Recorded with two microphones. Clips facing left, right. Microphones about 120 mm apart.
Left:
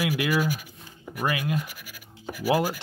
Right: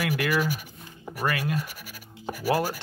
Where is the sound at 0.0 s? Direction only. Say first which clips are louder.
Left 1 dB; 10° left (ahead or behind).